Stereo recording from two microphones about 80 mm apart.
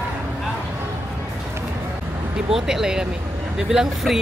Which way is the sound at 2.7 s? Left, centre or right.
Centre.